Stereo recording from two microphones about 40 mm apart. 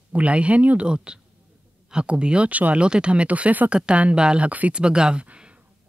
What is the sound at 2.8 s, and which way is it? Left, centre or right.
Speech, right.